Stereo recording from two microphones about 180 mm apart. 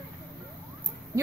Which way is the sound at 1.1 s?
15° right (ahead or behind).